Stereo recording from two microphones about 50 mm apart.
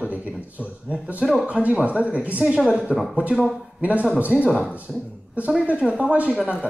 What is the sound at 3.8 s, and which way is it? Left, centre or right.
Speech, right.